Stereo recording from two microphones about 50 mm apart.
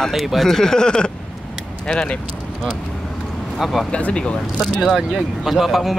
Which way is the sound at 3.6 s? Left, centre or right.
Centre.